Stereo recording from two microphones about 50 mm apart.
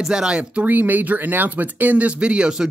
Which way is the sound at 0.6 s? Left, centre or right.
Right.